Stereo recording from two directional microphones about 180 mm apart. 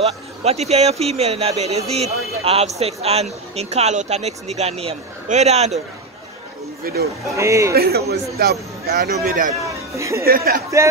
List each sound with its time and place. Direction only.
0.0 s speech: 35° right (ahead or behind)
6.8 s speech: 60° right (ahead or behind)
7.3 s a man's voice: 15° right (ahead or behind)
7.7 s a man's voice: 60° right (ahead or behind)
9.9 s a man's voice: 15° right (ahead or behind)
10.2 s a man's voice: 55° right (ahead or behind)